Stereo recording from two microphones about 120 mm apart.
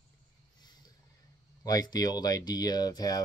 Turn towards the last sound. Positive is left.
turn(degrees=30)  # may be behind; listen again after turning